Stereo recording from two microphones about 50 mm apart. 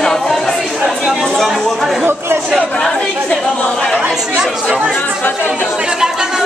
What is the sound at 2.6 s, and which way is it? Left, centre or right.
Speech, centre.